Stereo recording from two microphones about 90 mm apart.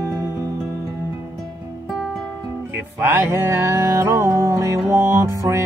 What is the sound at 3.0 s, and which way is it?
Music, 25° right (ahead or behind).